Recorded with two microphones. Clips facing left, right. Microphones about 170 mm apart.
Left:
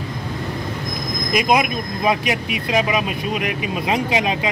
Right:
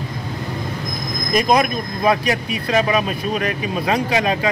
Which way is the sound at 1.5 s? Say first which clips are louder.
Right 1 dB; 15° left (ahead or behind).